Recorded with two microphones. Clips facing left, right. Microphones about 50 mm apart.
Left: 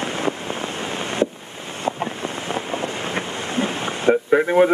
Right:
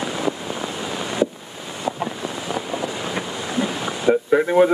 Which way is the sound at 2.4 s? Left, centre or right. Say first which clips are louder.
Even; left.